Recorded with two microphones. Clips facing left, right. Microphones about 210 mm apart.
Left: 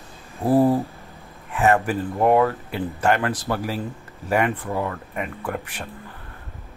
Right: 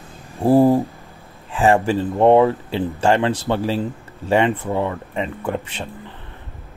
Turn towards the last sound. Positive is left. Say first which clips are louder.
# right 4 dB
turn(degrees=-25)  # may be behind; listen again after turning